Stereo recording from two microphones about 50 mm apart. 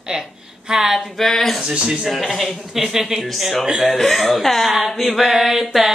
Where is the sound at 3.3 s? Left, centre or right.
Centre.